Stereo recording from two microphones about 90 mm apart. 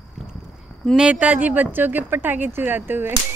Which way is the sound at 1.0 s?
10° right (ahead or behind).